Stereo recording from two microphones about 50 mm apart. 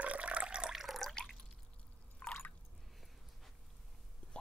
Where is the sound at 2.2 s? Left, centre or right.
Left.